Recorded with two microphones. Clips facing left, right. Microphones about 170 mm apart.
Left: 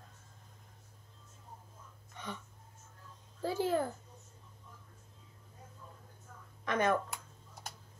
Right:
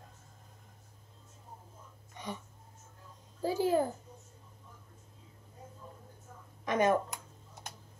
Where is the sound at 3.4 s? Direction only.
10° right (ahead or behind).